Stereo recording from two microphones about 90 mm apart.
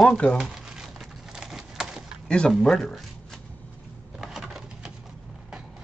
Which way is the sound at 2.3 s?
5° left (ahead or behind).